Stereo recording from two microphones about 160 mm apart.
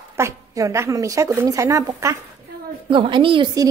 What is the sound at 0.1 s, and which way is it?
Speech, 20° right (ahead or behind).